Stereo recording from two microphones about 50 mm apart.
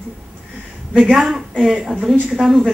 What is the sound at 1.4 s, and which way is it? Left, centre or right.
Speech, centre.